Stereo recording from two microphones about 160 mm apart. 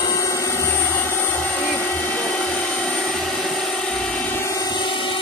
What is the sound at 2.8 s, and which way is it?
Vehicle, 5° left (ahead or behind).